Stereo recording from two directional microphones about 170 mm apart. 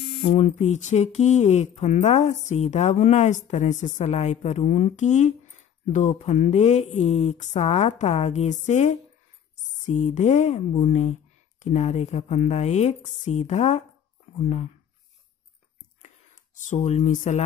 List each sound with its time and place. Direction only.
0.2 s a woman's voice: 40° left (ahead or behind)
16.6 s speech: 45° left (ahead or behind)